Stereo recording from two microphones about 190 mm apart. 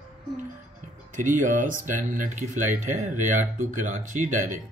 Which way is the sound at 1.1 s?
40° right (ahead or behind).